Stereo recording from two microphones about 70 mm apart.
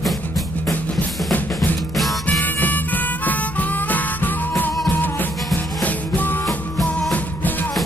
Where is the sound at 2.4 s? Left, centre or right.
Left.